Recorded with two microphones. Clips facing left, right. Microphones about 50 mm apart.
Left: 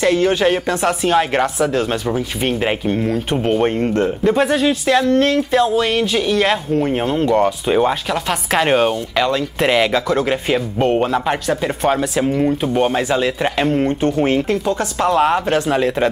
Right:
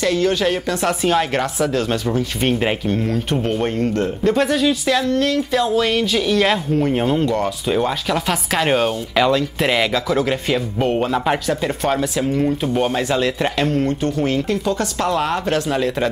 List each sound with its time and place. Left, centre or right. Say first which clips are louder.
0.0 s speech: left 3 dB; left
0.8 s speech: left 2 dB; centre
5.1 s speech: left 4 dB; left
5.5 s speech: left 2 dB; centre
9.1 s speech: right 1 dB; centre
13.7 s speech: left 3 dB; left
14.7 s speech: left 3 dB; centre